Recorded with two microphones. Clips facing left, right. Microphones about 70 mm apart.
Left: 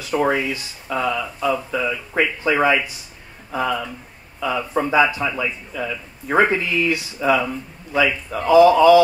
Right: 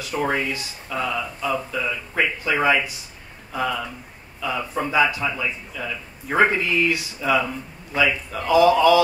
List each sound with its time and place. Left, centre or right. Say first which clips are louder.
0.0 s a sound: left 5 dB; left
0.5 s speech: left 3 dB; left
4.4 s speech: left 4 dB; left
6.6 s speech: even; right
6.9 s a man's voice: left 3 dB; left